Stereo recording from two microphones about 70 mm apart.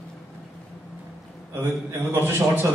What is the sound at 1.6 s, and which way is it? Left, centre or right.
Speech, right.